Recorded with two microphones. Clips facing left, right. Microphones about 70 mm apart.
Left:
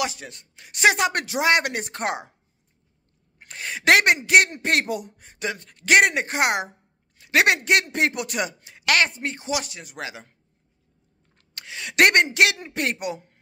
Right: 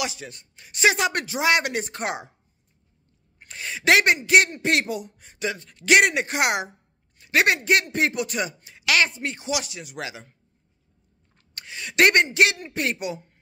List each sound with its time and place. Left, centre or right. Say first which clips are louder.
0.0 s speech: left 2 dB; left
0.3 s speech: even; left
3.5 s a woman's voice: left 1 dB; left
7.2 s a man's voice: left 1 dB; left
8.8 s speech: left 1 dB; left
9.2 s speech: even; left
11.5 s a sound: left 1 dB; left
12.3 s a man's voice: even; left
12.8 s a man's voice: even; left